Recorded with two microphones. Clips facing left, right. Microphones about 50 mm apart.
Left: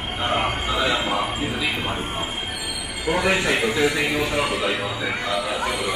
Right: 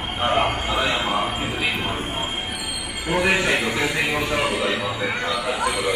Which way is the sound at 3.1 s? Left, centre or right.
Right.